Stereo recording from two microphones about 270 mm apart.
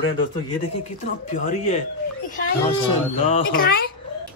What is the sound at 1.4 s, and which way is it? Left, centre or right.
Speech, left.